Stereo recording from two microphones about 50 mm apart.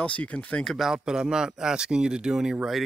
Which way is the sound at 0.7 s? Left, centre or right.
Centre.